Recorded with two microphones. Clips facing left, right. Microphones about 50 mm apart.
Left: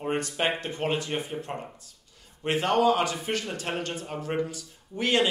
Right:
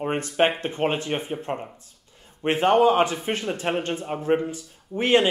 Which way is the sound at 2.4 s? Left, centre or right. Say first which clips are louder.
Right 5 dB; right.